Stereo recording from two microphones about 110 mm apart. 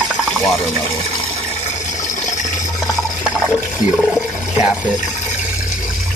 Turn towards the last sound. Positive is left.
turn(degrees=-5)  # may be behind; listen again after turning